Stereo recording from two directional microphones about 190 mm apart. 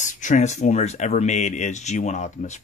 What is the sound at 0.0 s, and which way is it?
Speech, 40° left (ahead or behind).